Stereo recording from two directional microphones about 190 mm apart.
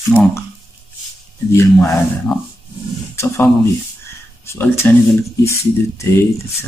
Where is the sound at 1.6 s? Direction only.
10° left (ahead or behind).